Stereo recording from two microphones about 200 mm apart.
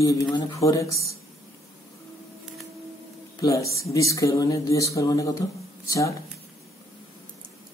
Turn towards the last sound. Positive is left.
turn(degrees=15)  # may be behind; listen again after turning